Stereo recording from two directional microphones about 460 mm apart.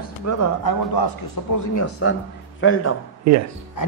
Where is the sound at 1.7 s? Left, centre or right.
Left.